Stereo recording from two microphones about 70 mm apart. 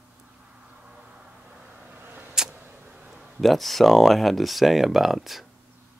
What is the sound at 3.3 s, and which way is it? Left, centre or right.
Speech, centre.